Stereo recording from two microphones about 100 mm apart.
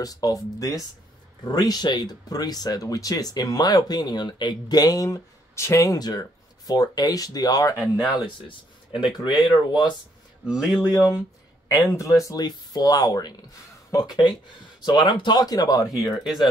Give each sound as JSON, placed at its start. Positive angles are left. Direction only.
{"t": 0.0, "sound": "speech", "side_deg": 40}
{"t": 8.1, "sound": "speech", "side_deg": 55}
{"t": 10.4, "sound": "speech", "side_deg": -10}
{"t": 10.8, "sound": "speech", "side_deg": 35}
{"t": 16.1, "sound": "speech", "side_deg": -5}